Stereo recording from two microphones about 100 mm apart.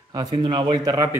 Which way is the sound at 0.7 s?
40° right (ahead or behind).